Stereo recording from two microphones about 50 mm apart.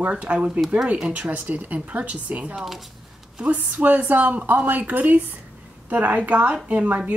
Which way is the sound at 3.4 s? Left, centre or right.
Right.